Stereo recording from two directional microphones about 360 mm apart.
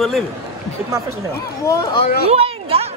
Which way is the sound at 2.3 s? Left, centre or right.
Centre.